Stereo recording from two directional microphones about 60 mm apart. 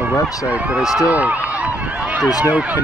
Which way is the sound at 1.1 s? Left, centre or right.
Right.